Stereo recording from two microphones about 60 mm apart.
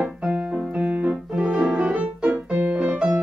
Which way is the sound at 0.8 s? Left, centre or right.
Right.